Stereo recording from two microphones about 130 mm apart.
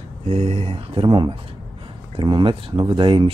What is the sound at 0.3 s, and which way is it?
Speech, 55° right (ahead or behind).